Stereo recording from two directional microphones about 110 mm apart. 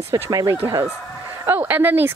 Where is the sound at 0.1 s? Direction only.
35° right (ahead or behind).